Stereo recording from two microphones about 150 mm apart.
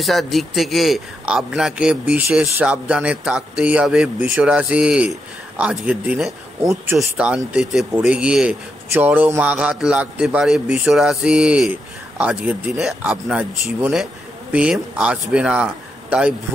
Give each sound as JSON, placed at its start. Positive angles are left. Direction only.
{"t": 0.0, "sound": "a man's voice", "side_deg": 0}
{"t": 6.7, "sound": "speech", "side_deg": -20}
{"t": 7.2, "sound": "a man's voice", "side_deg": -5}